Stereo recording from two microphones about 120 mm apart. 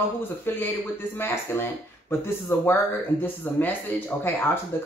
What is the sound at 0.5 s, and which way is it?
Speech, 20° left (ahead or behind).